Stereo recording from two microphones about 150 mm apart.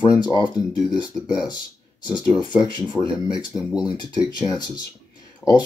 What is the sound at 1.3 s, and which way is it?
Speech, 25° left (ahead or behind).